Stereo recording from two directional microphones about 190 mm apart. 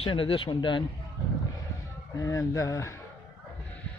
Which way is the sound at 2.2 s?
20° left (ahead or behind).